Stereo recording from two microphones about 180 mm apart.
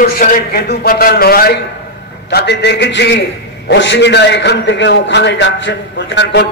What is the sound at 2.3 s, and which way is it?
A man's voice, 70° left (ahead or behind).